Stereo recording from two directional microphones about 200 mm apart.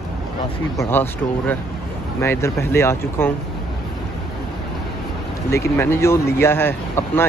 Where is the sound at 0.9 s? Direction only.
10° left (ahead or behind).